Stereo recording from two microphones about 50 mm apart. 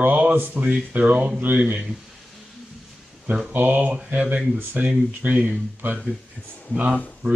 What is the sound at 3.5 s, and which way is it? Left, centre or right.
Speech, right.